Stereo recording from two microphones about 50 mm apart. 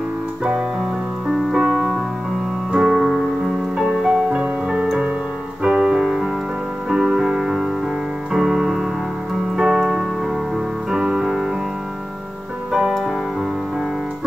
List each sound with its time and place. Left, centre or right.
0.4 s music: centre
2.7 s keyboard: centre
4.0 s music: centre
9.6 s keyboard: centre
10.9 s music: centre
12.7 s music: centre